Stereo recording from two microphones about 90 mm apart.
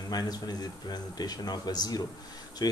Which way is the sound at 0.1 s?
50° left (ahead or behind).